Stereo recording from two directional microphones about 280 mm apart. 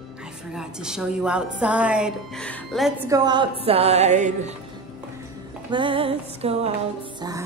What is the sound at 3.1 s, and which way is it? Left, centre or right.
A woman's voice, centre.